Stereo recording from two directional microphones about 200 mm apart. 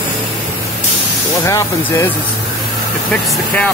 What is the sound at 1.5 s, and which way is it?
Speech, 15° left (ahead or behind).